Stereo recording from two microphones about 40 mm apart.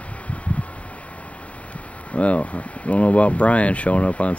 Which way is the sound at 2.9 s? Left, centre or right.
Left.